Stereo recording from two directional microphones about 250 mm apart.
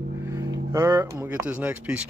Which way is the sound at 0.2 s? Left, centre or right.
Centre.